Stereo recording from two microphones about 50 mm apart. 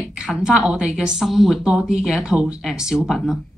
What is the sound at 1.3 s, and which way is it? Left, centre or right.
Speech, centre.